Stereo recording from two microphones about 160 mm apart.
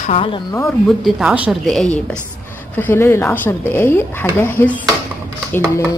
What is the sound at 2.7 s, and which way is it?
Speech, 15° left (ahead or behind).